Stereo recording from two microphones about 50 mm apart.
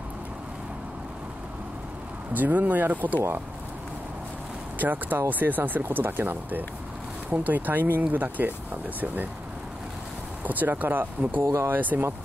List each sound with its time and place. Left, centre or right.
2.3 s speech: right
4.7 s speech: right
10.4 s speech: right